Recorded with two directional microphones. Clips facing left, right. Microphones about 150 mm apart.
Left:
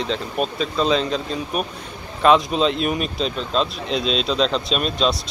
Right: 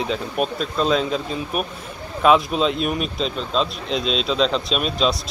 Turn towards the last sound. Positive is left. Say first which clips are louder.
# even
turn(degrees=0)  # may be behind; listen again after turning